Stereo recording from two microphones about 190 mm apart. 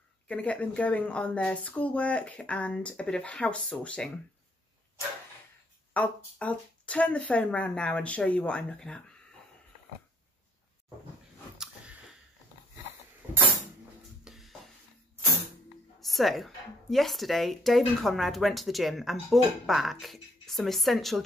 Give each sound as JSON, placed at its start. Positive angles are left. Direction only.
{"t": 0.3, "sound": "speech", "side_deg": 5}
{"t": 5.9, "sound": "speech", "side_deg": 5}
{"t": 11.5, "sound": "a sound", "side_deg": -5}
{"t": 14.2, "sound": "music", "side_deg": 0}
{"t": 16.0, "sound": "a woman's voice", "side_deg": 0}